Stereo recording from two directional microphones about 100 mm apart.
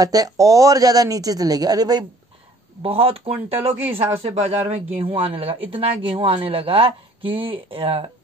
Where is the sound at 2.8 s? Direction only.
75° right (ahead or behind).